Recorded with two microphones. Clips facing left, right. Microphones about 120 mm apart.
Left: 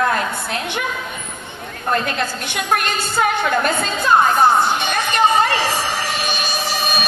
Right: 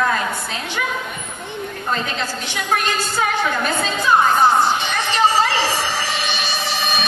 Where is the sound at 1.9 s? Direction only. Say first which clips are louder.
Left 4 dB; 60° left (ahead or behind).